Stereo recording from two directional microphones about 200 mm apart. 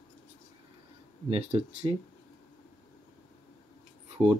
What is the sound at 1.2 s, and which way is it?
Speech, 30° right (ahead or behind).